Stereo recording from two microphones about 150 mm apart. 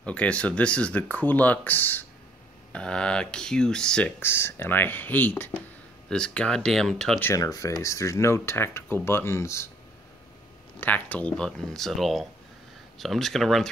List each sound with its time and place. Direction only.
0.0 s speech: 10° left (ahead or behind)
7.2 s speech: 20° left (ahead or behind)
10.8 s speech: 10° left (ahead or behind)